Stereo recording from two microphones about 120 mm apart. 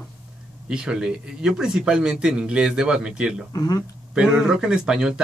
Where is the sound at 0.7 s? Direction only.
5° right (ahead or behind).